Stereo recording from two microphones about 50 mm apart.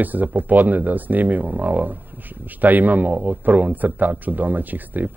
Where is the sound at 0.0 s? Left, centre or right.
Right.